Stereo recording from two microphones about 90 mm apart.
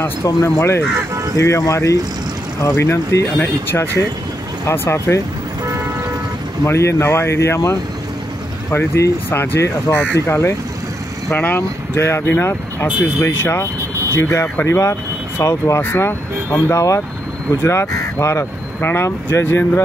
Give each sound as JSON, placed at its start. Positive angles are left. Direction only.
{"t": 0.0, "sound": "speech", "side_deg": 30}
{"t": 6.6, "sound": "speech", "side_deg": 30}
{"t": 8.7, "sound": "speech", "side_deg": 30}